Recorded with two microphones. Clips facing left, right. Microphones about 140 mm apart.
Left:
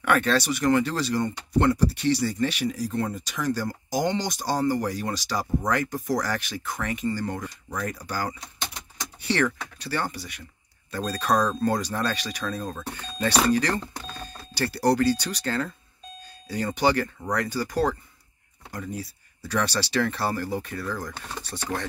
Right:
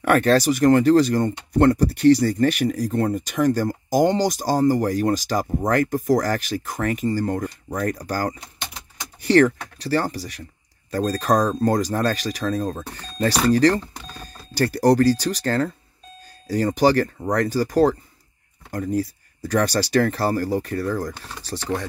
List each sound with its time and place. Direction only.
0.0 s speech: 40° right (ahead or behind)